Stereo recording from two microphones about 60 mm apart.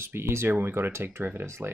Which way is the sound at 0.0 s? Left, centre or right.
Right.